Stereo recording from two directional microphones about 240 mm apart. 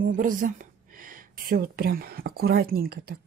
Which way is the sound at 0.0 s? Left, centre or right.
Right.